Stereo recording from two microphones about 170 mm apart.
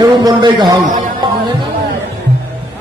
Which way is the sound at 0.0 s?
25° right (ahead or behind).